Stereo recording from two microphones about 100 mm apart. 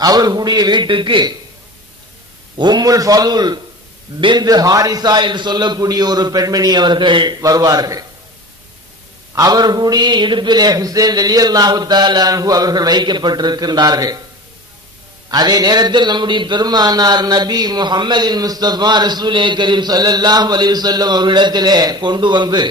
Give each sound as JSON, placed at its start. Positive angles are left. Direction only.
{"t": 0.0, "sound": "a man's voice", "side_deg": -40}
{"t": 2.5, "sound": "a man's voice", "side_deg": -45}
{"t": 7.4, "sound": "a man's voice", "side_deg": -40}
{"t": 9.3, "sound": "a man's voice", "side_deg": -40}
{"t": 15.2, "sound": "a man's voice", "side_deg": -40}